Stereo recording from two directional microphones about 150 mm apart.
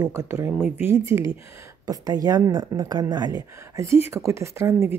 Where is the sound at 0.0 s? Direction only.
20° right (ahead or behind).